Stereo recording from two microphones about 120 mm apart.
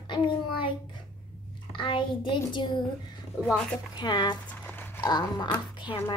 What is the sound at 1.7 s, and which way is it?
A child's voice, 45° left (ahead or behind).